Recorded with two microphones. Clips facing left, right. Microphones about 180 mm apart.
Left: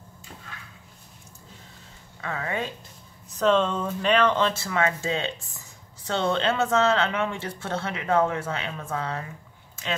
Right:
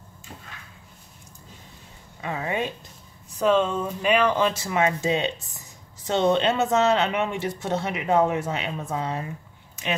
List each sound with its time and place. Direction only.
2.2 s speech: 20° right (ahead or behind)